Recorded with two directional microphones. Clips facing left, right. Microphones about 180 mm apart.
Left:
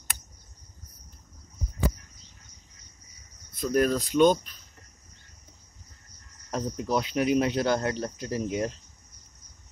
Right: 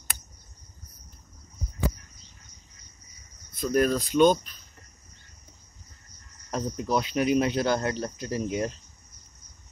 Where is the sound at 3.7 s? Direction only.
10° left (ahead or behind).